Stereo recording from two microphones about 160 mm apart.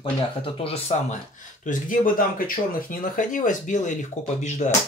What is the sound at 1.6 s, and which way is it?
Speech, 55° left (ahead or behind).